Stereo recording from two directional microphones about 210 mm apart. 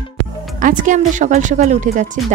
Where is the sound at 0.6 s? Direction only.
40° right (ahead or behind).